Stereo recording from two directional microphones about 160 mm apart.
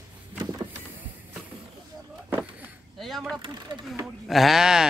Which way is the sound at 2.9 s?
Centre (ahead or behind).